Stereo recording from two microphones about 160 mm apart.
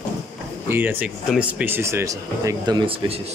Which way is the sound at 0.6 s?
15° right (ahead or behind).